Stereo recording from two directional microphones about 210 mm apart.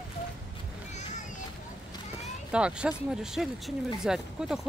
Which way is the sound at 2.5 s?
5° right (ahead or behind).